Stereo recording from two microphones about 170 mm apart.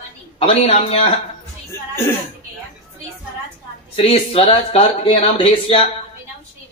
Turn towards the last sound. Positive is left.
turn(degrees=35)  # may be behind; listen again after turning